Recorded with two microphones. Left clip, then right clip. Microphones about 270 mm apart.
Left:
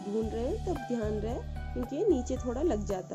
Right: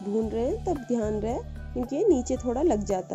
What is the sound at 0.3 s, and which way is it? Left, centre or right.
Speech, centre.